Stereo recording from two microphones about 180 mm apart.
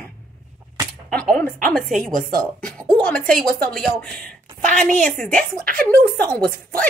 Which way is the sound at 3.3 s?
50° right (ahead or behind).